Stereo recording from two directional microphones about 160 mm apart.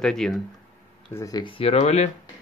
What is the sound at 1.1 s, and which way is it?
Speech, 20° left (ahead or behind).